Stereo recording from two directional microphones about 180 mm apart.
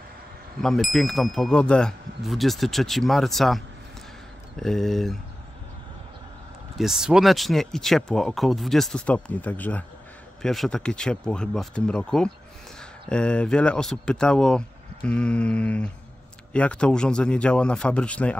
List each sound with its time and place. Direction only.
0.6 s speech: centre (ahead or behind)
6.8 s speech: 5° right (ahead or behind)